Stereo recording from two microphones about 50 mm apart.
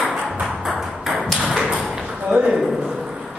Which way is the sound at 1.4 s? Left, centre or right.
Centre.